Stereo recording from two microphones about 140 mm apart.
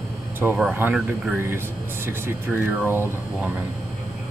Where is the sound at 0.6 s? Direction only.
10° right (ahead or behind).